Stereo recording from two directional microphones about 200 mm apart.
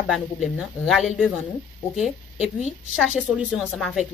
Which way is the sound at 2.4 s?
35° left (ahead or behind).